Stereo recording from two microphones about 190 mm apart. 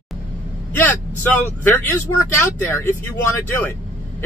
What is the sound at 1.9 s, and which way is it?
Speech, 15° left (ahead or behind).